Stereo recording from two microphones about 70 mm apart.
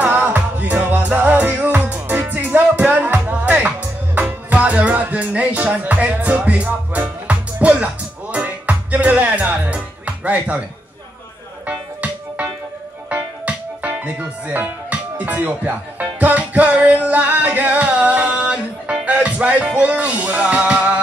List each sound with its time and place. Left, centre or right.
0.0 s music: right
10.0 s speech: right
11.6 s music: centre